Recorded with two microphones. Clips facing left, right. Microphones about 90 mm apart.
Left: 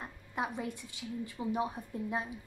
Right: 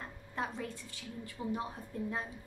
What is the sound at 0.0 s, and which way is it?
A woman's voice, 15° left (ahead or behind).